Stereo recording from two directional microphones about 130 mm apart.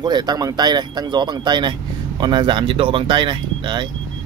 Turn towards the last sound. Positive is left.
turn(degrees=-35)  # may be behind; listen again after turning